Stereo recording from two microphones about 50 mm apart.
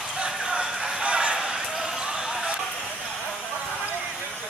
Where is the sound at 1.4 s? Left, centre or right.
Centre.